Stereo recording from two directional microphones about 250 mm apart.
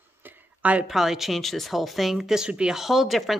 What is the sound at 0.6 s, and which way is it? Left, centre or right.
A woman's voice, centre.